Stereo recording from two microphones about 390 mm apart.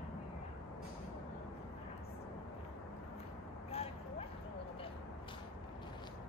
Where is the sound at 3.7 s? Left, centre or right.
Centre.